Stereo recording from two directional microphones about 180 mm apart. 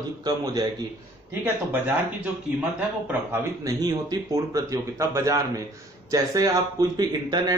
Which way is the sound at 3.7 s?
20° right (ahead or behind).